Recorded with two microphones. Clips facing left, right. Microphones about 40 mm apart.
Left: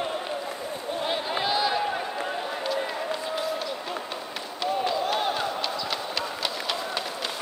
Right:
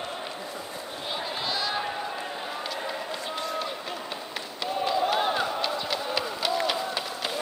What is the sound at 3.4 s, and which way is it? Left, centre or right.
Run, centre.